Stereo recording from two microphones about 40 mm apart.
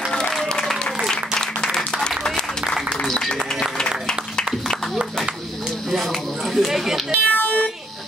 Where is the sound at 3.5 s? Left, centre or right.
Centre.